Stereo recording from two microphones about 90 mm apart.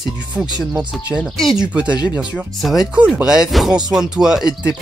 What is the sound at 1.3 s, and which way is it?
Speech, centre (ahead or behind).